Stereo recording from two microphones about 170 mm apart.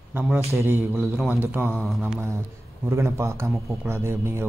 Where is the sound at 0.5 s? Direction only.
15° right (ahead or behind).